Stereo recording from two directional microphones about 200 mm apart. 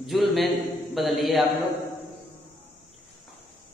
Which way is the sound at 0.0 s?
Centre (ahead or behind).